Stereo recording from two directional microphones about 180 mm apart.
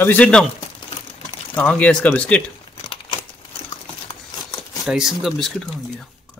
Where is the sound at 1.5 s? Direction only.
10° left (ahead or behind).